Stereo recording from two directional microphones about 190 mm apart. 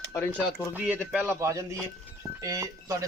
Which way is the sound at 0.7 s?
5° right (ahead or behind).